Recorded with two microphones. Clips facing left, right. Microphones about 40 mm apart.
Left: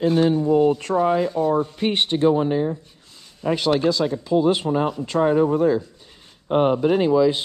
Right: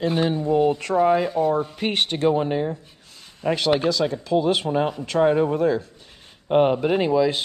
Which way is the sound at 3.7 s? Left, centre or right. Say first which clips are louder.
Left 2 dB; centre.